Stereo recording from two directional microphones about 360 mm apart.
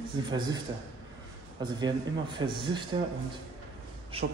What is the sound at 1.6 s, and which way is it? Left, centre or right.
Speech, centre.